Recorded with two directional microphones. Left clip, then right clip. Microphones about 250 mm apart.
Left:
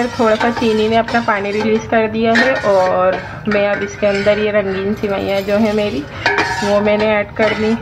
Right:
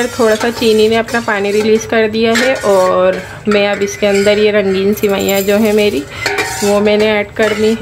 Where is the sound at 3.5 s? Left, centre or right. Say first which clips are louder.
Right 3 dB; right.